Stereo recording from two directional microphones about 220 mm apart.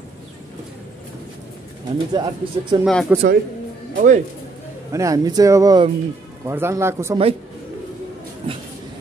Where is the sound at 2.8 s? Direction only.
Centre (ahead or behind).